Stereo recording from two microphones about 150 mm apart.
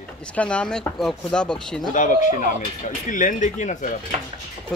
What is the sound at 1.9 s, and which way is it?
Speech, 60° left (ahead or behind).